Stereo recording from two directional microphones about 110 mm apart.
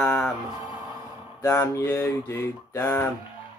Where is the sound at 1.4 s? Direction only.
25° left (ahead or behind).